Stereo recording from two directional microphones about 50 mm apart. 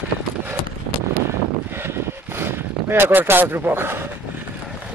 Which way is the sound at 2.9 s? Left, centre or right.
Right.